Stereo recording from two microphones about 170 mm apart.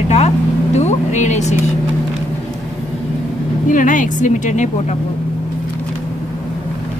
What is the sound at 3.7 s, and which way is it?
Speech, 50° left (ahead or behind).